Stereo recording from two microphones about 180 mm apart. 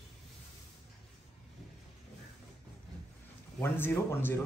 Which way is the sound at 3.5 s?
10° left (ahead or behind).